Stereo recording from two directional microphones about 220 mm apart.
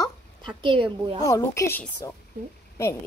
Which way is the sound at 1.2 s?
15° left (ahead or behind).